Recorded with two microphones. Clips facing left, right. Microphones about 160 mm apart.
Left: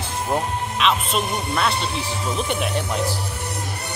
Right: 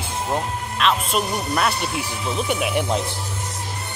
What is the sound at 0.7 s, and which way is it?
Speech, centre (ahead or behind).